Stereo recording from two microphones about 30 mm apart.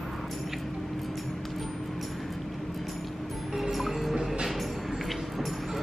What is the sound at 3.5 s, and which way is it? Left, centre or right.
Music, centre.